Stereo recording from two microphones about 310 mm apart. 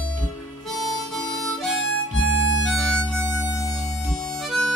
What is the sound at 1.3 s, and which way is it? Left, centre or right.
Harmonica, centre.